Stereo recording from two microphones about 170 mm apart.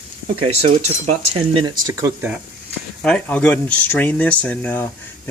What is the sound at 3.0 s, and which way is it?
Speech, 5° left (ahead or behind).